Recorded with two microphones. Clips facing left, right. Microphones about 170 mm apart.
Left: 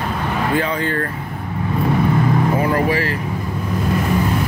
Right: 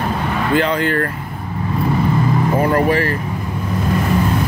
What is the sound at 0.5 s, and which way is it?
Speech, 75° right (ahead or behind).